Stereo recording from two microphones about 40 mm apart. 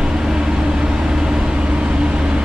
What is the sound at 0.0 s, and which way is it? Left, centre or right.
Vehicle, centre.